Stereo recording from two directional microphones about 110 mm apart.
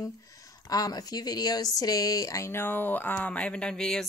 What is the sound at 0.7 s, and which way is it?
Speech, 35° left (ahead or behind).